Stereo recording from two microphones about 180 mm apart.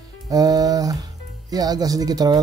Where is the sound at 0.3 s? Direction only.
20° right (ahead or behind).